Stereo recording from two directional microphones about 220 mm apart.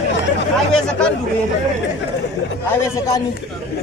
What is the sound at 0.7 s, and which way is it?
Speech, 5° left (ahead or behind).